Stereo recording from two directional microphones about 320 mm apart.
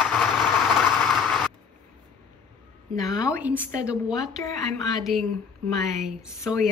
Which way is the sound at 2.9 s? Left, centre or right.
Centre.